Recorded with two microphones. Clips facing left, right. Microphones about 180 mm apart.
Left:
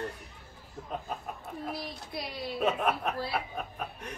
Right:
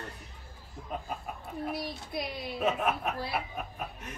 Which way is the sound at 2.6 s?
5° right (ahead or behind).